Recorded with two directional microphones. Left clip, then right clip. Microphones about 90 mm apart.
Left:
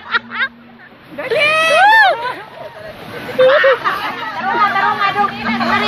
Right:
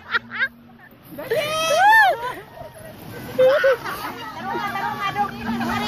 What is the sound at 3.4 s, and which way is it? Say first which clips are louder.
Speech: left 6 dB; 15° left (ahead or behind).